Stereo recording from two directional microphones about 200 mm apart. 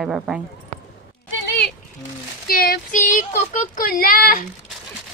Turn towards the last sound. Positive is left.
turn(degrees=45)  # may be behind; listen again after turning